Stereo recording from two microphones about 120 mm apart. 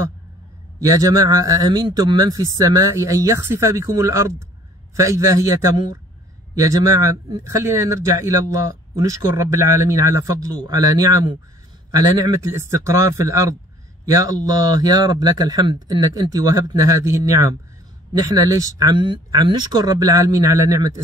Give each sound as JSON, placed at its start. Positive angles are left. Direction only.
{"t": 0.7, "sound": "speech", "side_deg": -30}